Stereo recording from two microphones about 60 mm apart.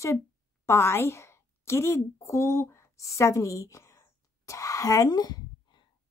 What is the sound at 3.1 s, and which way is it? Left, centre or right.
Speech, left.